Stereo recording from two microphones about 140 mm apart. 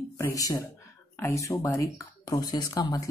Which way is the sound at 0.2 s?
25° left (ahead or behind).